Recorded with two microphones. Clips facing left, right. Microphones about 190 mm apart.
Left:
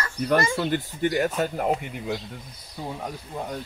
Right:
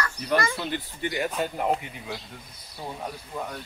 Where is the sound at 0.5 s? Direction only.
45° left (ahead or behind).